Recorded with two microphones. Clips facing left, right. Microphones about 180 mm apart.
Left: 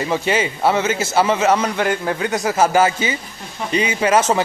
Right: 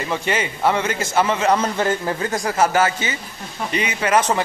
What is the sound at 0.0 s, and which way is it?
Speech, 25° left (ahead or behind).